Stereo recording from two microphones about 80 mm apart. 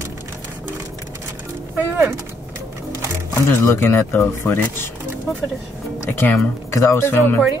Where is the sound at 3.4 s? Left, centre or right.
Left.